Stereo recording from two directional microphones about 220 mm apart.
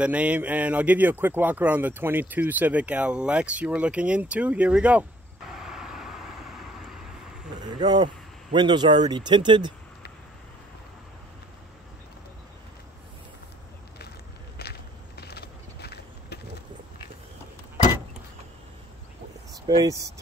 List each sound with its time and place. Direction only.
0.0 s speech: 5° right (ahead or behind)
7.6 s vehicle: 20° right (ahead or behind)
8.5 s speech: 20° right (ahead or behind)
14.6 s a sound: 45° left (ahead or behind)
19.8 s speech: 15° right (ahead or behind)